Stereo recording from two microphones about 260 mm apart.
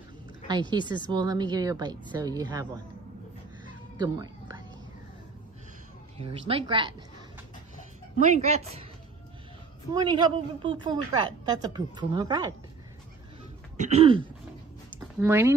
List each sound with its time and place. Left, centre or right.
0.5 s a woman's voice: centre
4.0 s music: centre
6.1 s a woman's voice: right
8.2 s a woman's voice: right
9.9 s a woman's voice: centre
13.7 s a woman's voice: right
15.0 s speech: centre